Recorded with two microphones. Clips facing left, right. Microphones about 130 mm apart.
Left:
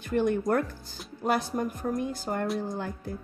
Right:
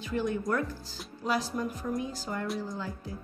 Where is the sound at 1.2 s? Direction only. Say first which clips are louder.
Left 3 dB; 55° left (ahead or behind).